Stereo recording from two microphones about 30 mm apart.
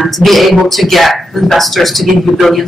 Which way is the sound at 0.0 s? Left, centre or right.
Centre.